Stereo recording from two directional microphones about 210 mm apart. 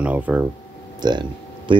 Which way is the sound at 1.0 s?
20° right (ahead or behind).